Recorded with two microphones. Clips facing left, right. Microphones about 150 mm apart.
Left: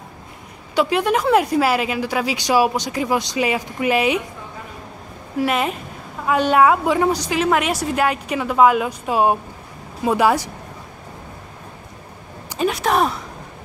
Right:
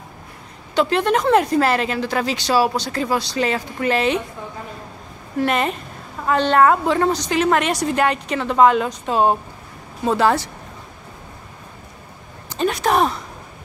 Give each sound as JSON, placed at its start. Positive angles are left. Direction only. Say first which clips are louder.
{"t": 0.7, "sound": "speech", "louder": "even", "side_deg": 10}
{"t": 5.4, "sound": "a woman's voice", "louder": "even", "side_deg": 5}
{"t": 12.4, "sound": "a sound", "louder": "even", "side_deg": 5}